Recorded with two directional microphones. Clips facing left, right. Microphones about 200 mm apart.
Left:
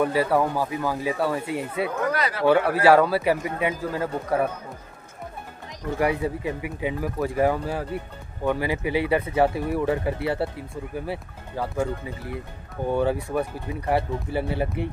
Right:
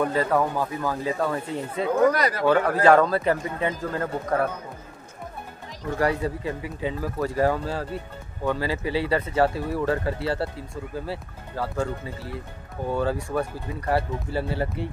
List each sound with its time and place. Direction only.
0.0 s speech: 10° left (ahead or behind)
2.1 s speech: 40° right (ahead or behind)
2.4 s speech: 10° left (ahead or behind)
5.9 s speech: 15° left (ahead or behind)